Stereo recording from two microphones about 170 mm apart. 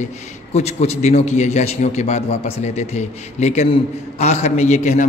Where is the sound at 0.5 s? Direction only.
40° left (ahead or behind).